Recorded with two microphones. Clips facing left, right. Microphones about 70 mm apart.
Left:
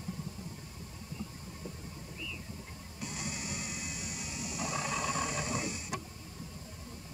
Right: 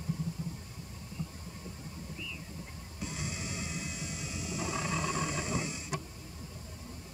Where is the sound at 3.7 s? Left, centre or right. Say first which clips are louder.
Right 2 dB; centre.